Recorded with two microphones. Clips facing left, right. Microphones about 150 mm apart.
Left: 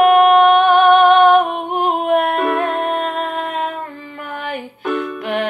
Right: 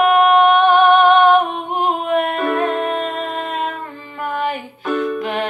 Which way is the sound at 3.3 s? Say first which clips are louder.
Left 1 dB; 55° left (ahead or behind).